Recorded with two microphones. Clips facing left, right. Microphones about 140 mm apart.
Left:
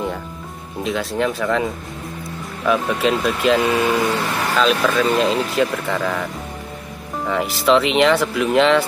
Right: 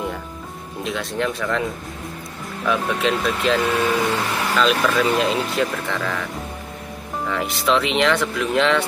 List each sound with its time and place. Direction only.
0.8 s speech: centre (ahead or behind)
7.2 s speech: 5° left (ahead or behind)